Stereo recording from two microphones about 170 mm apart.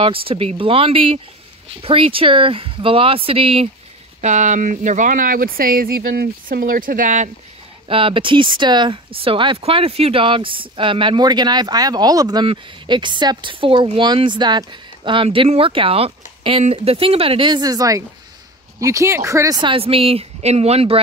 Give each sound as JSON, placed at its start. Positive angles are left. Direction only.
{"t": 0.0, "sound": "speech", "side_deg": -30}
{"t": 4.2, "sound": "speech", "side_deg": -45}
{"t": 7.9, "sound": "speech", "side_deg": -30}